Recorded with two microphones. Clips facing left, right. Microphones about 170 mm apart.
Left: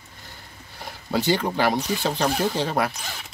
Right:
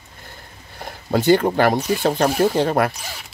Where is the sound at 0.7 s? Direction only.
50° right (ahead or behind).